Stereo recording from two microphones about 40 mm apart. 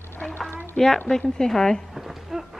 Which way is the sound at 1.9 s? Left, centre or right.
Centre.